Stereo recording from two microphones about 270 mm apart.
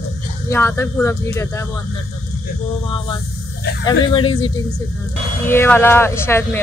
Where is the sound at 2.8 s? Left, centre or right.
Centre.